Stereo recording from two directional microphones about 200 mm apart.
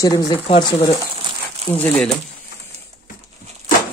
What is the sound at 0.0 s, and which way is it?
Speech, 20° left (ahead or behind).